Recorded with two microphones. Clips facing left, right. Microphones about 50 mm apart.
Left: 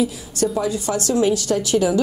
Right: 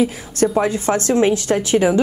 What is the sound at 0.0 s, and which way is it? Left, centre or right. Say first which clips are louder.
A woman's voice: right 3 dB; right.